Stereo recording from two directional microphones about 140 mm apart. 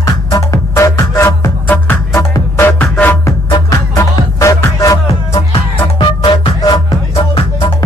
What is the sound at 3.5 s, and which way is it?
Music, 30° left (ahead or behind).